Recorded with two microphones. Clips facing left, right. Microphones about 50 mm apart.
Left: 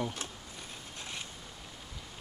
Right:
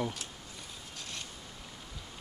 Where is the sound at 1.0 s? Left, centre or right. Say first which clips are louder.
Left 1 dB; centre.